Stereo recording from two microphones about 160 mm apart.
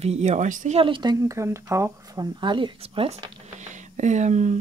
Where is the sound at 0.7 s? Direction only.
30° right (ahead or behind).